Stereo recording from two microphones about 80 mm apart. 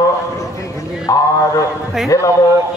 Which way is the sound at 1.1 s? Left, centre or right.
Left.